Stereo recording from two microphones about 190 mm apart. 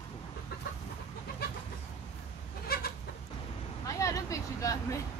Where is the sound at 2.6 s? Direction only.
55° left (ahead or behind).